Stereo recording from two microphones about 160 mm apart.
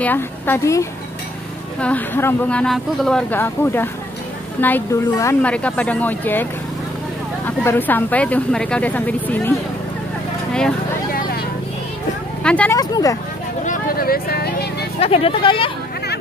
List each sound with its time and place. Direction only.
0.0 s speech: 10° left (ahead or behind)
5.4 s speech: 10° left (ahead or behind)
7.4 s speech: 10° left (ahead or behind)
12.4 s speech: 10° left (ahead or behind)
12.7 s speech: 20° left (ahead or behind)
13.7 s vehicle: 65° left (ahead or behind); by 14.9 s 85° left
15.0 s speech: 40° left (ahead or behind)